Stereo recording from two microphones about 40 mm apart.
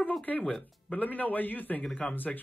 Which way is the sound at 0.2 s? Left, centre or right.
Left.